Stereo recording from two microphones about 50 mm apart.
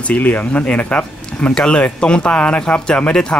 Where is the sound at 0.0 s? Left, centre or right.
Left.